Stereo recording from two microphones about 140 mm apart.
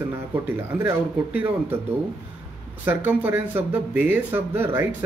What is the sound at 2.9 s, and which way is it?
Speech, 15° right (ahead or behind).